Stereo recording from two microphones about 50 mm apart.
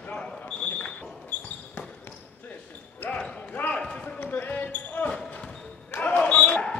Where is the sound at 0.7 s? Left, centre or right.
Left.